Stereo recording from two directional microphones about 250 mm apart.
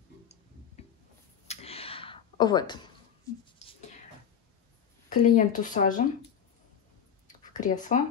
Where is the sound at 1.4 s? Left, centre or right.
Left.